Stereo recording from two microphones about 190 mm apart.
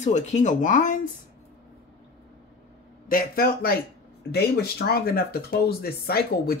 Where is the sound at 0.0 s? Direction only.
35° left (ahead or behind).